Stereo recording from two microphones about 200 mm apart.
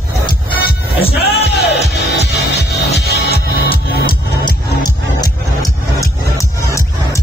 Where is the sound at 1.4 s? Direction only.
55° left (ahead or behind).